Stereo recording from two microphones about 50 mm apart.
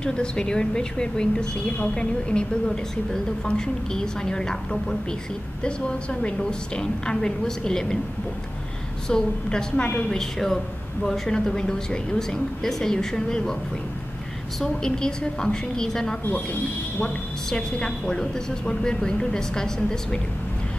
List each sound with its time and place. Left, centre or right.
0.0 s a woman's voice: centre
9.1 s a woman's voice: centre
14.6 s a woman's voice: centre